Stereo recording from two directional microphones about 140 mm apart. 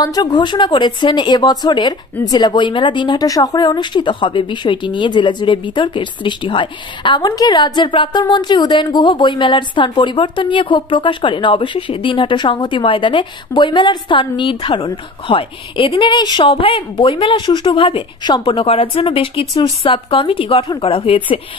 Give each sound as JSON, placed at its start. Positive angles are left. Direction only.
{"t": 0.0, "sound": "speech", "side_deg": 25}